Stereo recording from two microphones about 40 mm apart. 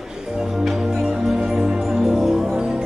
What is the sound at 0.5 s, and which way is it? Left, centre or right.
Music, centre.